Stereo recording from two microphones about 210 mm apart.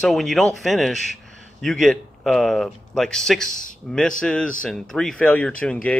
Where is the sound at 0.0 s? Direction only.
Centre (ahead or behind).